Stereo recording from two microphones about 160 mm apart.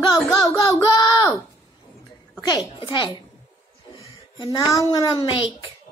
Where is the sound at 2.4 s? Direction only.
25° left (ahead or behind).